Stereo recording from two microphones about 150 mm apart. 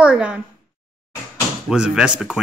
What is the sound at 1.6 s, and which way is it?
Speech, 5° right (ahead or behind).